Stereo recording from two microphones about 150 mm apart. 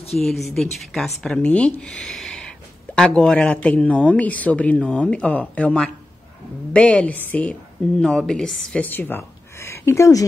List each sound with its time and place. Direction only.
0.2 s a woman's voice: centre (ahead or behind); by 10.2 s 20° left (ahead or behind)